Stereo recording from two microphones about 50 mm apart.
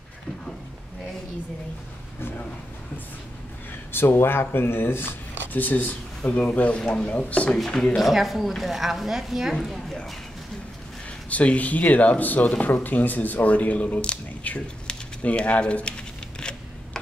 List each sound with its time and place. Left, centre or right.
3.9 s speech: left
5.5 s speech: left
7.9 s a woman's voice: centre
9.6 s a woman's voice: centre
11.2 s speech: left
16.3 s a sound: centre